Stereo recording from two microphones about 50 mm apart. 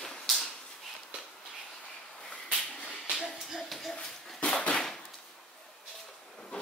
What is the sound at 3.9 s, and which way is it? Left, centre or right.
Dog, centre.